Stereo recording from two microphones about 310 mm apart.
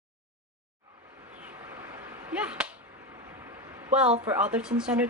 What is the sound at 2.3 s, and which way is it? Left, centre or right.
Whip, centre.